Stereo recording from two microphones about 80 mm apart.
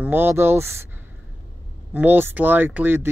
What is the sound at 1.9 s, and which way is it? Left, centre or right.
Speech, right.